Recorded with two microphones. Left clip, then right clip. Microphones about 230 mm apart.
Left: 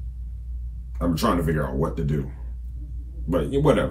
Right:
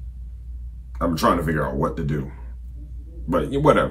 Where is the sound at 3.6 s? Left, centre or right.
Centre.